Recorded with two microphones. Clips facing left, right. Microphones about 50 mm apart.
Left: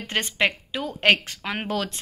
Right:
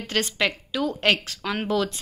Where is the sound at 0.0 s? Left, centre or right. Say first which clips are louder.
Left 1 dB; left.